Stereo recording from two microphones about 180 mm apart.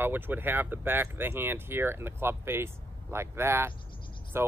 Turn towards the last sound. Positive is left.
turn(degrees=-15)  # may be behind; listen again after turning